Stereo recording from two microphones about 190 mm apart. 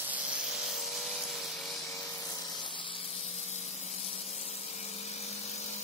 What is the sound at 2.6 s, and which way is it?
Spray, 25° left (ahead or behind).